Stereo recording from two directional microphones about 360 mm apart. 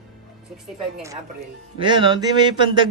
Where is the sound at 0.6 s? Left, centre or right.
Centre.